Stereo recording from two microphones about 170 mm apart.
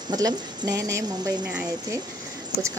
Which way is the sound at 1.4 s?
10° right (ahead or behind).